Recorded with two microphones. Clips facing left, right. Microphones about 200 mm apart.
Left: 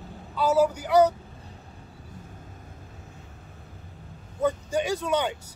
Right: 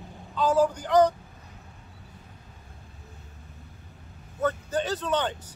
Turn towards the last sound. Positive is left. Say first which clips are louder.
# left 2 dB
turn(degrees=10)  # may be behind; listen again after turning